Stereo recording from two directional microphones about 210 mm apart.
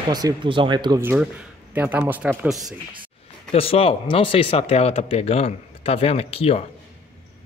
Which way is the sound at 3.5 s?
30° left (ahead or behind).